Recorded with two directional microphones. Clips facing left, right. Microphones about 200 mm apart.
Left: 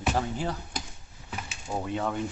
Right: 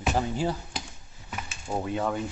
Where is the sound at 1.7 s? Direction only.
5° right (ahead or behind).